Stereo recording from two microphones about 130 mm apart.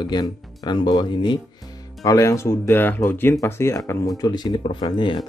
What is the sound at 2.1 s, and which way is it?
Speech, 25° left (ahead or behind).